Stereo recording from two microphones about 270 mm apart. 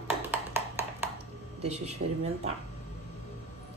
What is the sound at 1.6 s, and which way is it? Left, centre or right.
Speech, right.